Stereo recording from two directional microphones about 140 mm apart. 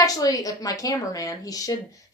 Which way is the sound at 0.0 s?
25° left (ahead or behind).